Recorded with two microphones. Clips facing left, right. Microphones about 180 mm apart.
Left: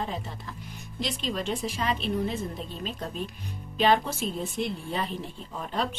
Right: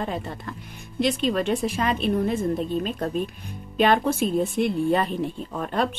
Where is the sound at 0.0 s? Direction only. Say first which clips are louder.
Right 5 dB; 60° right (ahead or behind).